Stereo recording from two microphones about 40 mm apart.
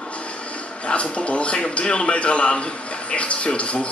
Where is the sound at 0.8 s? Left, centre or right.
Left.